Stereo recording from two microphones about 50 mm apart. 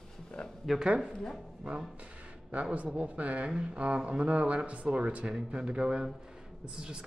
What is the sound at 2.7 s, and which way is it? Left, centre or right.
Speech, right.